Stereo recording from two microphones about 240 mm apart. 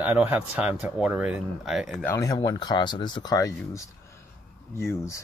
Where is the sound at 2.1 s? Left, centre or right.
Centre.